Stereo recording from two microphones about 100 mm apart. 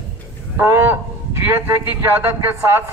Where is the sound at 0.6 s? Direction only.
25° right (ahead or behind).